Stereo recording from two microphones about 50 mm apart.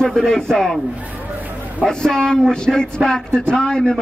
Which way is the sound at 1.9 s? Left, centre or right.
Centre.